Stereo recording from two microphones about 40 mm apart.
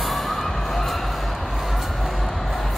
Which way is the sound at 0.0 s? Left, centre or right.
Centre.